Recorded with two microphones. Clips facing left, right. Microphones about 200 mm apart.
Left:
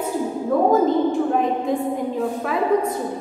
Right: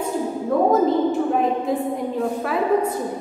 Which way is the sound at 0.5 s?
Centre (ahead or behind).